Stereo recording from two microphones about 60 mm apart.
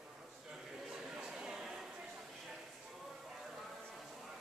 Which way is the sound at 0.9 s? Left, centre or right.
Centre.